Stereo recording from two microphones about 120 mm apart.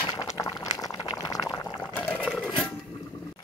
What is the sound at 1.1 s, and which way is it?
Boiling, 30° left (ahead or behind).